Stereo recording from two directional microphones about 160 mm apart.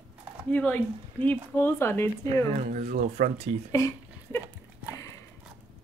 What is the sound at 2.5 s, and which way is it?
Speech, 45° right (ahead or behind).